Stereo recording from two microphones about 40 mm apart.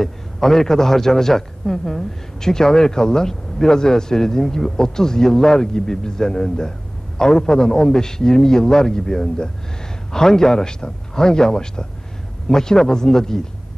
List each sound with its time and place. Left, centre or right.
0.0 s a man's voice: centre